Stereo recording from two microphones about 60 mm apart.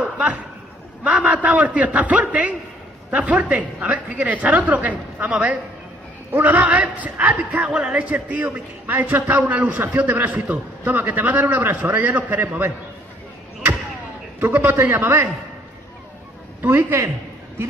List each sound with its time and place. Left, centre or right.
1.0 s a sound: right
2.0 s a man's voice: right
14.4 s a man's voice: right
16.6 s a man's voice: right